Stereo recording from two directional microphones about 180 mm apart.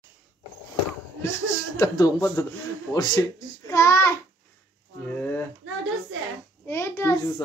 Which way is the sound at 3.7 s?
15° left (ahead or behind).